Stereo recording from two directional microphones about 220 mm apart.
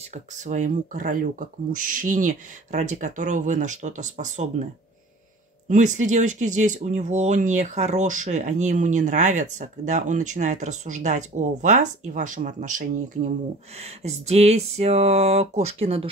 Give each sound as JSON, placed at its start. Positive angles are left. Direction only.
{"t": 0.1, "sound": "speech", "side_deg": -35}
{"t": 5.7, "sound": "speech", "side_deg": -35}
{"t": 13.7, "sound": "a sound", "side_deg": -30}